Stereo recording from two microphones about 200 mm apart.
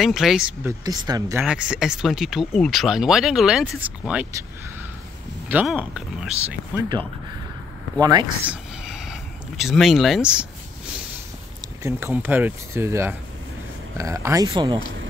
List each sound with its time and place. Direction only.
0.0 s speech: centre (ahead or behind)
0.8 s speech: 20° right (ahead or behind)
1.4 s speech: 5° right (ahead or behind)
5.5 s speech: 5° right (ahead or behind)
8.0 s speech: 20° right (ahead or behind)
8.5 s a sound: 5° right (ahead or behind)
11.8 s speech: 10° right (ahead or behind)